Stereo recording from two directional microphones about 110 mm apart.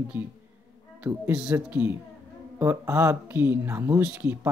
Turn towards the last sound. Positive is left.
turn(degrees=-20)  # may be behind; listen again after turning